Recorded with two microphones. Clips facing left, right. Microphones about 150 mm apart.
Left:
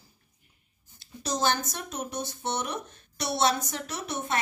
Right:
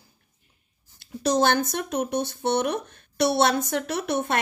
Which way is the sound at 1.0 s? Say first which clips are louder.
Right 7 dB; 60° right (ahead or behind).